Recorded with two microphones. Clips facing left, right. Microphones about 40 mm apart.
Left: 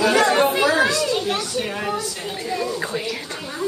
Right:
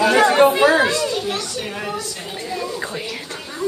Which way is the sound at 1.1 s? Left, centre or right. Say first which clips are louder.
Left 1 dB; centre.